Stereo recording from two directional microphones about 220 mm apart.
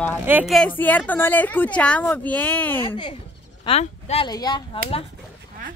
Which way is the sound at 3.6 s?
30° left (ahead or behind).